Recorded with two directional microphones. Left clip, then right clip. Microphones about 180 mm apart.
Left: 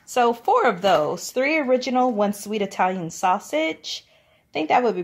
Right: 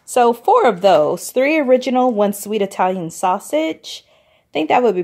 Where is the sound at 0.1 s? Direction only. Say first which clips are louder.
Right 6 dB; 40° right (ahead or behind).